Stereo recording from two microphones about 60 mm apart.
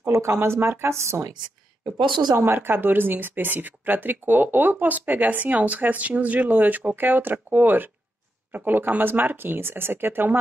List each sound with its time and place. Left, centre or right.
0.1 s a woman's voice: right
2.3 s speech: right